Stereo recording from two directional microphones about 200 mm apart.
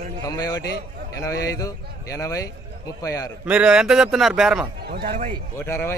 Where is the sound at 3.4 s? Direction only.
5° right (ahead or behind).